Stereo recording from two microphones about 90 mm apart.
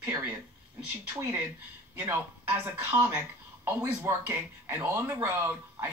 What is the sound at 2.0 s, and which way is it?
Speech, 20° right (ahead or behind).